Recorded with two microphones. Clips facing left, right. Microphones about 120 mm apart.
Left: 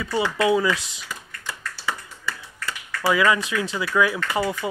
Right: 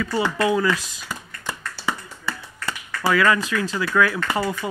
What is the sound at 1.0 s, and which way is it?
Finger snapping, 25° right (ahead or behind).